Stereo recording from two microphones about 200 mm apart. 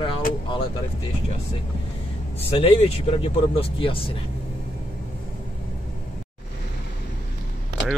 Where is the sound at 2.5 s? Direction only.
30° left (ahead or behind).